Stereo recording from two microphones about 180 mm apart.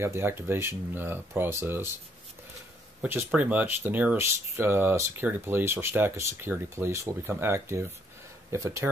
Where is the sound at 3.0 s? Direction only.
5° right (ahead or behind).